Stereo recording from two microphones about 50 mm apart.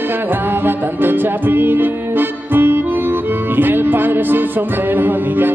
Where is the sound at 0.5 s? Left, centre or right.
Right.